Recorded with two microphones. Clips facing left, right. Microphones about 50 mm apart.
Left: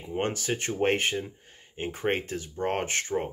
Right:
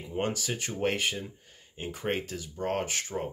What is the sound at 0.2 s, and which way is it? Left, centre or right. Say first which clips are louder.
Speech: left 2 dB; left.